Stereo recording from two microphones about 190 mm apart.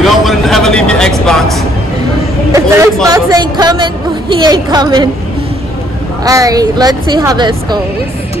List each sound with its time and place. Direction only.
0.0 s vehicle: centre (ahead or behind)
2.5 s speech: 15° right (ahead or behind)
6.2 s speech: 20° right (ahead or behind)